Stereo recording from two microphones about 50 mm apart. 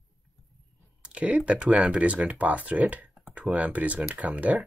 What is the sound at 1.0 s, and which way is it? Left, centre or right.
Speech, right.